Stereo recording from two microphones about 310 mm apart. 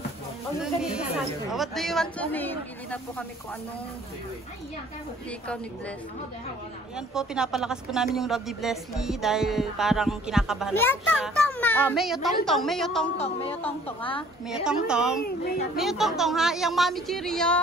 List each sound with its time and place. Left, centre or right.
1.5 s a woman's voice: centre
7.2 s a woman's voice: centre
13.7 s a woman's voice: centre
14.5 s a woman's voice: centre
15.2 s a child's voice: left
15.8 s a woman's voice: centre